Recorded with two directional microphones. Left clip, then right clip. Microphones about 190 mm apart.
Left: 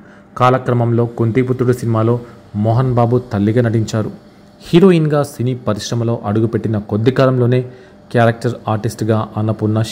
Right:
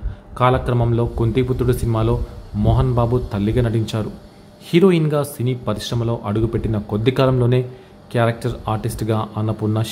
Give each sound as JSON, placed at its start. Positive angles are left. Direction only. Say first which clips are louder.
{"t": 0.3, "sound": "speech", "louder": "left 4 dB", "side_deg": 20}